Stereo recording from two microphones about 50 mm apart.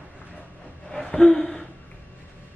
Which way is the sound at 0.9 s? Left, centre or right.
Centre.